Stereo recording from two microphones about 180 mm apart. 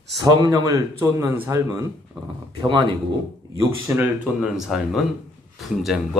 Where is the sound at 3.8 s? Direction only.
10° right (ahead or behind).